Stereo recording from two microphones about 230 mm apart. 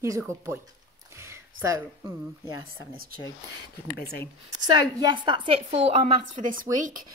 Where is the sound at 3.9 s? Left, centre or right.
Left.